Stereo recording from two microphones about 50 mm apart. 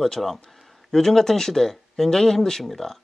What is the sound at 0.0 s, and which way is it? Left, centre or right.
Speech, centre.